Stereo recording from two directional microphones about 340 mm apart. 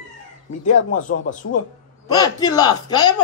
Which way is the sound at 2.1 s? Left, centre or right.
Centre.